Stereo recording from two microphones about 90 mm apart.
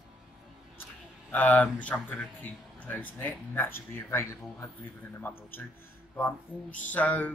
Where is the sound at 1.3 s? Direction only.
15° left (ahead or behind); by 4.6 s 30° left (ahead or behind).